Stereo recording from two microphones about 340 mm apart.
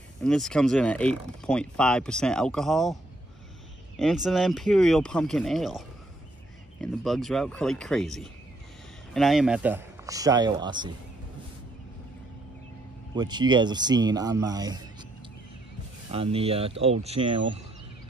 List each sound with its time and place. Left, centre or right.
0.2 s speech: centre
13.1 s speech: centre
16.1 s speech: centre